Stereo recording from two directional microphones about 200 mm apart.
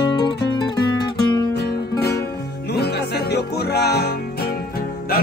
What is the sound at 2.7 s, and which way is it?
Music, 55° left (ahead or behind).